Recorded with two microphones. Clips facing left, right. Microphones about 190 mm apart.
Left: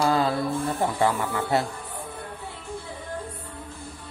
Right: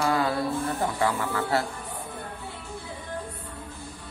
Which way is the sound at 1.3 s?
20° left (ahead or behind).